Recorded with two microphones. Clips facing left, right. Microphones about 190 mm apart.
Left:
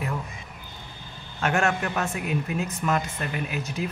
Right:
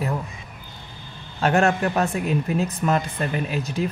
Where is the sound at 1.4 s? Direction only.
35° right (ahead or behind).